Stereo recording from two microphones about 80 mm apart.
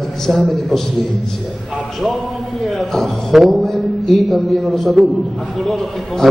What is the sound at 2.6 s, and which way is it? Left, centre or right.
A man's voice, centre.